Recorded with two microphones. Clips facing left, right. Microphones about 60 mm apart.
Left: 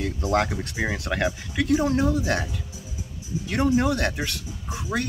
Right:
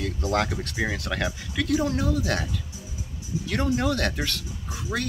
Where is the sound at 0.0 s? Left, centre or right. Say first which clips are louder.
Left 2 dB; left.